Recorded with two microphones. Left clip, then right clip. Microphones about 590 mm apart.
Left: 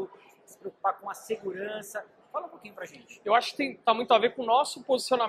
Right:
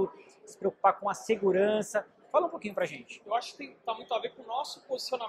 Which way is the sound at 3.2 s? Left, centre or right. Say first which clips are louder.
Left 9 dB; left.